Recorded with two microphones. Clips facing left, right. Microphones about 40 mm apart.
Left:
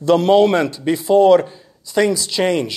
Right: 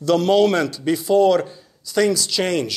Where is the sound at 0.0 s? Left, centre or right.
Left.